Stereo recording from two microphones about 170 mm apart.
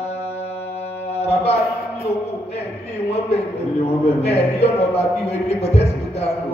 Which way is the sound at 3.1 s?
35° left (ahead or behind).